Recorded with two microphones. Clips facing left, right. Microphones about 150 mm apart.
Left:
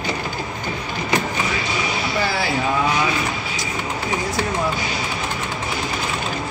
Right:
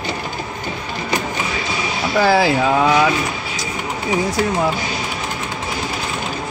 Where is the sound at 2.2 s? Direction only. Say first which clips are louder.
Right 10 dB; 90° right.